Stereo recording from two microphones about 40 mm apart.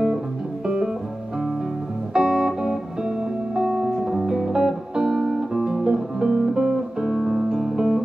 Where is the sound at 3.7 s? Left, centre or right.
Centre.